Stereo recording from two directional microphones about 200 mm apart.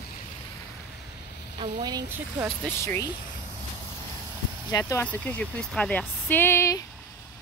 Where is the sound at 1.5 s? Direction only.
20° right (ahead or behind).